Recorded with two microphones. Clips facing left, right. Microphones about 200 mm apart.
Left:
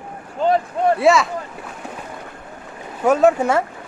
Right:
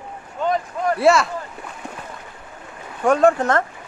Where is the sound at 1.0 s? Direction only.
Centre (ahead or behind).